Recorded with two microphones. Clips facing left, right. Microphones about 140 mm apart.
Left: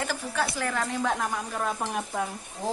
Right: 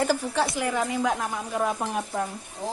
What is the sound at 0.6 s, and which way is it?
Speech, 15° right (ahead or behind).